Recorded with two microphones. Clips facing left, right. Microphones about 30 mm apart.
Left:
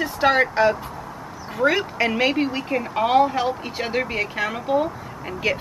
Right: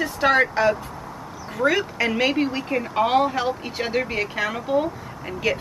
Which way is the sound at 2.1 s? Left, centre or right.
Centre.